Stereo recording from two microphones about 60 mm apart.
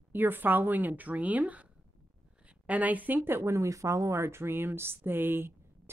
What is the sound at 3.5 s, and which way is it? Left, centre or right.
Speech, right.